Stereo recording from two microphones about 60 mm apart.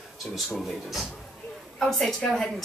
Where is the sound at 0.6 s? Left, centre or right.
Centre.